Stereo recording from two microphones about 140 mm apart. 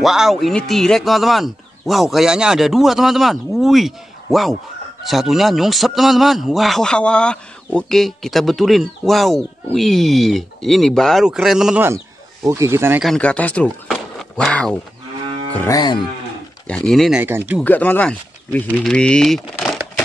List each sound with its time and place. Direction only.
0.0 s a man's voice: centre (ahead or behind)
12.4 s speech: 20° right (ahead or behind)
13.0 s speech: 5° left (ahead or behind)
13.8 s dog: centre (ahead or behind)
15.7 s moo: 30° left (ahead or behind)
16.6 s a man's voice: 5° left (ahead or behind)
17.2 s speech: 15° right (ahead or behind)
17.6 s speech: 10° left (ahead or behind)